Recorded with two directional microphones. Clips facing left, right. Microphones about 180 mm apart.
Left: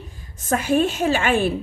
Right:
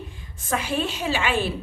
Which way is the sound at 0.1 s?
40° left (ahead or behind).